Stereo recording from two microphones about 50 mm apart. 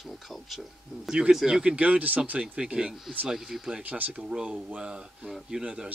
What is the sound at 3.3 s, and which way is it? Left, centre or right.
Speech, centre.